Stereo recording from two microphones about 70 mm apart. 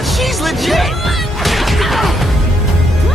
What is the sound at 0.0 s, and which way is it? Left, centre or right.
Music, centre.